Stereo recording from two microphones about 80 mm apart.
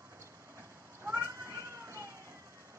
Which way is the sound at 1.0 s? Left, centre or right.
Right.